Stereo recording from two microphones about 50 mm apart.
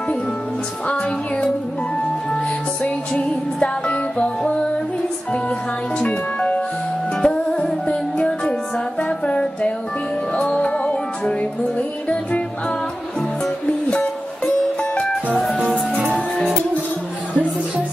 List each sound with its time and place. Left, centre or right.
2.8 s music: centre
5.9 s music: left